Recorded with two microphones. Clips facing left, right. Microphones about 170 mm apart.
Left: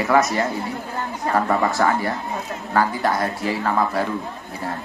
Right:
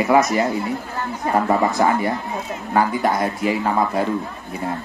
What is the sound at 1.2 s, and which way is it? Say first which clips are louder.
Speech: right 2 dB; 20° right (ahead or behind).